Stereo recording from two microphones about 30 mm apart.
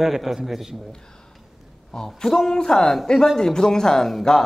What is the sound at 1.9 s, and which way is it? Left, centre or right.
Speech, left.